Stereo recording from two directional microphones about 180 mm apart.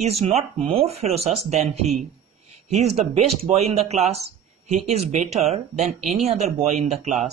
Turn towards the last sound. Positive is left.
turn(degrees=-40)  # may be behind; listen again after turning